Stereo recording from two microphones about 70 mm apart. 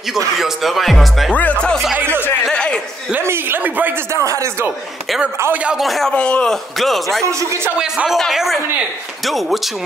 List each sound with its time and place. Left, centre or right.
0.4 s speech: centre
1.3 s speech: centre
2.0 s speech: right
2.5 s speech: centre
3.2 s speech: right
4.1 s speech: right
5.5 s speech: centre
5.8 s speech: centre
6.1 s speech: centre
7.2 s speech: right
7.7 s speech: centre
8.3 s speech: centre